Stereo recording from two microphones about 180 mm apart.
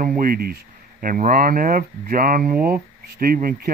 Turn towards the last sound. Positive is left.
turn(degrees=-55)  # may be behind; listen again after turning